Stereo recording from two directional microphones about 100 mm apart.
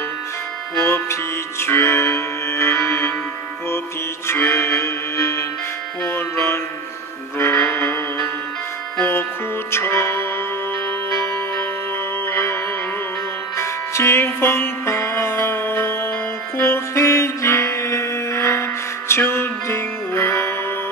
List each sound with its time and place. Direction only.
0.7 s music: 25° left (ahead or behind)
4.3 s music: 25° left (ahead or behind)
9.7 s music: 25° left (ahead or behind)
12.3 s music: 25° left (ahead or behind)
13.6 s music: 25° left (ahead or behind)